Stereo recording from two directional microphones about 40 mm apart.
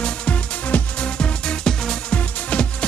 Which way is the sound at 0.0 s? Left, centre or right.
Left.